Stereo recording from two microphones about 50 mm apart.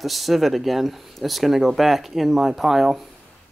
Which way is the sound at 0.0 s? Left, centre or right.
Centre.